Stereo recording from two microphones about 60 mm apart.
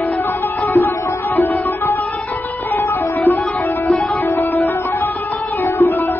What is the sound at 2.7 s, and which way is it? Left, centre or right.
Music, left.